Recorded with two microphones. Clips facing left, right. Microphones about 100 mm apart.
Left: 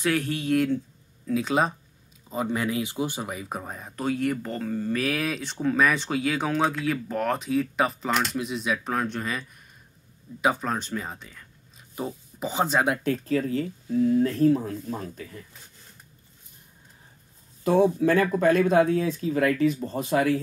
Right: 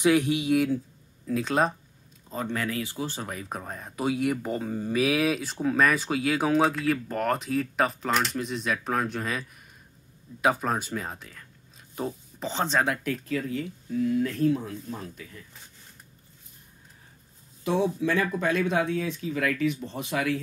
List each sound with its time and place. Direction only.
0.0 s speech: 15° right (ahead or behind); by 3.9 s 5° left (ahead or behind)
3.9 s speech: 10° right (ahead or behind); by 12.8 s 10° left (ahead or behind)
12.8 s speech: 20° left (ahead or behind)
13.1 s speech: 35° left (ahead or behind)
17.6 s speech: 45° left (ahead or behind)